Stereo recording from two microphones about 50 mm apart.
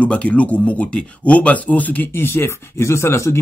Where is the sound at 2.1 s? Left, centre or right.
Left.